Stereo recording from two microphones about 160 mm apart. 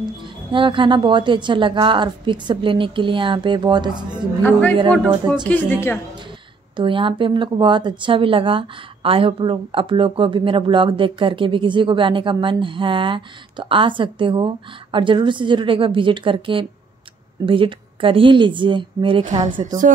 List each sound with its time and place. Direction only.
0.2 s speech: 30° right (ahead or behind)
4.4 s speech: 10° left (ahead or behind)
6.8 s speech: 30° right (ahead or behind)